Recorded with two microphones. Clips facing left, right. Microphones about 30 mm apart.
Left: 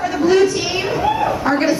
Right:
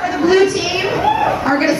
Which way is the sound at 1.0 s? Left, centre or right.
Right.